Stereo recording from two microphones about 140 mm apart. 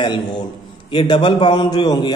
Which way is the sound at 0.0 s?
30° left (ahead or behind).